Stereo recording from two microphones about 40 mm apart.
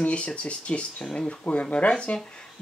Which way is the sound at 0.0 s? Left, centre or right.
Left.